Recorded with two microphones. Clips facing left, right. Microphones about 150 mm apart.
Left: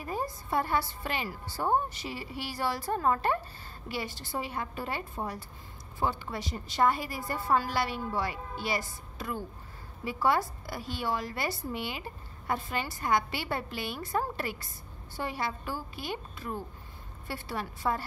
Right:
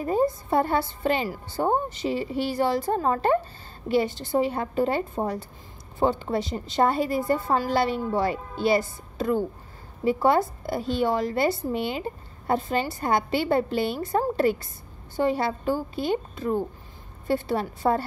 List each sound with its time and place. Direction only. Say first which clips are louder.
0.0 s speech: right 11 dB; 25° right (ahead or behind)